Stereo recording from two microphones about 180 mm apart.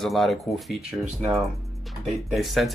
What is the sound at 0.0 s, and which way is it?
Speech, centre (ahead or behind).